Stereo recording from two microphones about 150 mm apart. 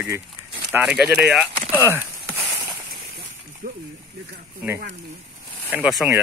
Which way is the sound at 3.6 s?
75° right (ahead or behind).